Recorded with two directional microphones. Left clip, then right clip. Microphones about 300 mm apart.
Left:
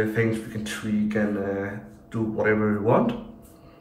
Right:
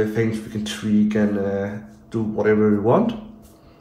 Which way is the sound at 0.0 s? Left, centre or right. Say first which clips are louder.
Right 2 dB; centre.